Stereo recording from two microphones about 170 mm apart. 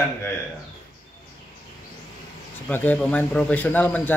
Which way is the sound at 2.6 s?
10° left (ahead or behind).